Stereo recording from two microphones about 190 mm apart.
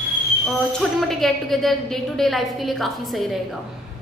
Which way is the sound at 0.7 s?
Centre (ahead or behind).